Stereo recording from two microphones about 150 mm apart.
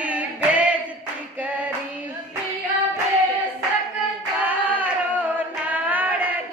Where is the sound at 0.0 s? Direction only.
10° right (ahead or behind).